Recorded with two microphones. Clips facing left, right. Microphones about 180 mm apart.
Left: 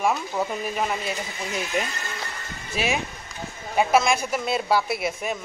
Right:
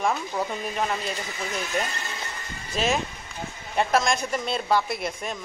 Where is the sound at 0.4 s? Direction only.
5° left (ahead or behind).